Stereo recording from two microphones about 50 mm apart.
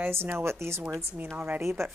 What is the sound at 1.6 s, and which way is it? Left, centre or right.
Speech, right.